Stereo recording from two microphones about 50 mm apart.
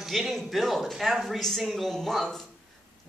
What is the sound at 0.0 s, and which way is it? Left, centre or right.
A man's voice, centre.